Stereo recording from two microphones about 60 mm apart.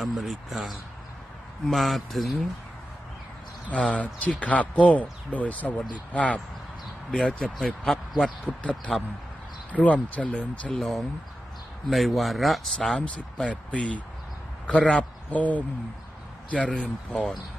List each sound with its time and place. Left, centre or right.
0.2 s speech: centre
3.6 s speech: centre
8.5 s speech: left
10.7 s speech: centre
13.7 s speech: centre
16.6 s speech: centre